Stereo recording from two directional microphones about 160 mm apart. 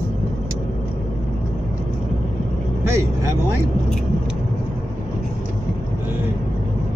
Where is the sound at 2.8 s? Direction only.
15° right (ahead or behind).